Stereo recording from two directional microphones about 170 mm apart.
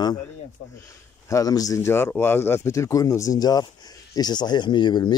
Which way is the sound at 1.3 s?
20° left (ahead or behind).